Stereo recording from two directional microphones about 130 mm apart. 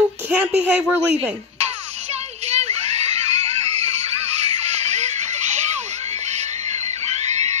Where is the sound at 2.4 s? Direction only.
55° right (ahead or behind).